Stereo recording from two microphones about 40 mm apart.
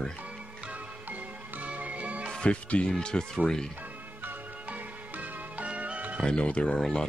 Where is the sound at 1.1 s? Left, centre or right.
Right.